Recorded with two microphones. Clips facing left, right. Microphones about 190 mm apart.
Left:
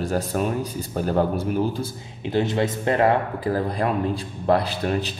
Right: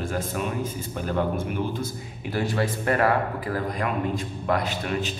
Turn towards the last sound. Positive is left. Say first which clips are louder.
# left 3 dB
turn(degrees=35)  # may be behind; listen again after turning